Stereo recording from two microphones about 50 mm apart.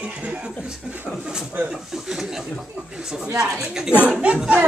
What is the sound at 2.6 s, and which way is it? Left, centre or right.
Speech, centre.